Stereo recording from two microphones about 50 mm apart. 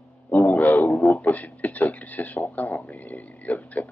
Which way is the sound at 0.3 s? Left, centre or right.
Left.